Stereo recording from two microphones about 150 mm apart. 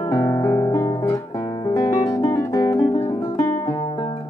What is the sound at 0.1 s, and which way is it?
Guitar, 20° left (ahead or behind).